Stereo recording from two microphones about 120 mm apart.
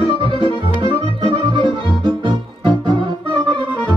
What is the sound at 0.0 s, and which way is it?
Music, 45° left (ahead or behind).